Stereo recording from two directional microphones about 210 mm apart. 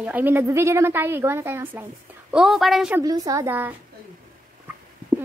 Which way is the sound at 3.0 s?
15° right (ahead or behind).